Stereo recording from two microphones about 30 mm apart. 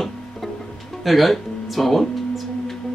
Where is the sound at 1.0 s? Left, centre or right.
Centre.